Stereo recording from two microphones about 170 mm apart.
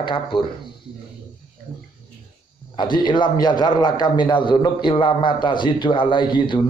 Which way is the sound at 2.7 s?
25° left (ahead or behind).